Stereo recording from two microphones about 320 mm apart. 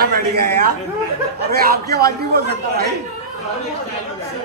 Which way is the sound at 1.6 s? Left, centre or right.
Right.